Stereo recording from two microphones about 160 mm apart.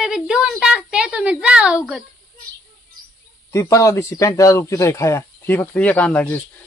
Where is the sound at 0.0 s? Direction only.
5° right (ahead or behind).